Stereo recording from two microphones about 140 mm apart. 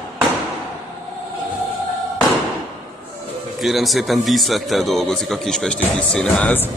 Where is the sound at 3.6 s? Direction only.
Centre (ahead or behind).